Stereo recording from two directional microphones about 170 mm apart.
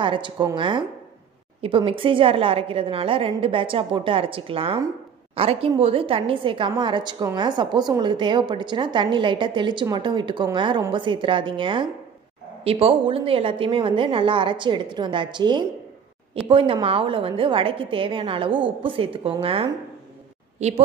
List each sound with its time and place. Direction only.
0.0 s a woman's voice: 30° right (ahead or behind)